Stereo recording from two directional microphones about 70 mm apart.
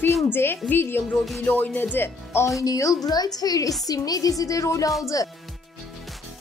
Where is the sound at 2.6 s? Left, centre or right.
Left.